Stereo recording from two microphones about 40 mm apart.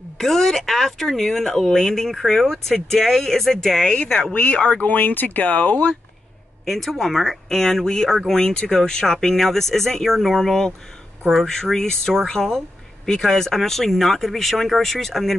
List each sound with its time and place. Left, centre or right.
0.2 s speech: centre
4.3 s speech: left
4.8 s speech: left
6.6 s speech: centre